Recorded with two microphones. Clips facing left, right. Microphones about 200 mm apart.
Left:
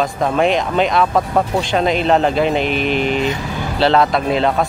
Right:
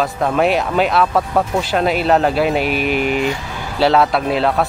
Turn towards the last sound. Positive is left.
turn(degrees=-5)  # may be behind; listen again after turning